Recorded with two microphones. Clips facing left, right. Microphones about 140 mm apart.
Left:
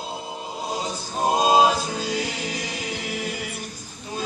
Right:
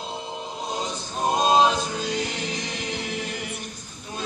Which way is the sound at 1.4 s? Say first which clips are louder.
Left 1 dB; 5° left (ahead or behind).